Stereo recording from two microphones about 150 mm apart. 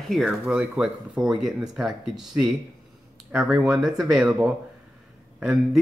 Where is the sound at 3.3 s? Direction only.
10° right (ahead or behind).